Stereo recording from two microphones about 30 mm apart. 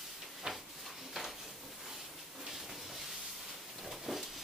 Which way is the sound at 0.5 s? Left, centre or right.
Right.